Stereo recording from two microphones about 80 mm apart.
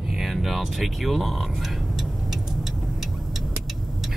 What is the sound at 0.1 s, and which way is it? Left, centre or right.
Speech, centre.